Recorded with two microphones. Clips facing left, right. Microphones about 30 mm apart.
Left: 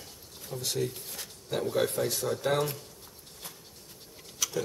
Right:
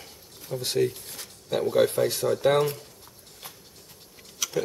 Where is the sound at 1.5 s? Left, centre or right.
Centre.